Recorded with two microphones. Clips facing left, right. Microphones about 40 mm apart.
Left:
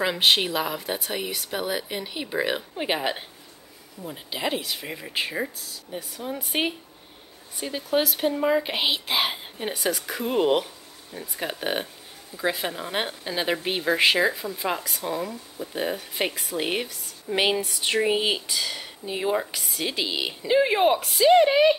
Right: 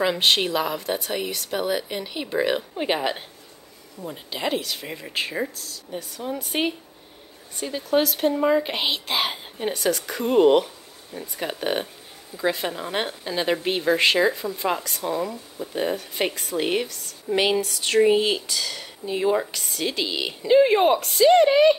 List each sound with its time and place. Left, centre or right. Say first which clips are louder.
0.0 s a woman's voice: right 1 dB; centre